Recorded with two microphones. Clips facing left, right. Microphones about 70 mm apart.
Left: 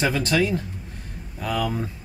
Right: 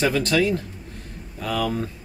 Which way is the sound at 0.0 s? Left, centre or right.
Centre.